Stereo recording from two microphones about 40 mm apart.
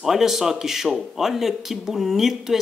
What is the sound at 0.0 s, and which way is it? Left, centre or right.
Speech, centre.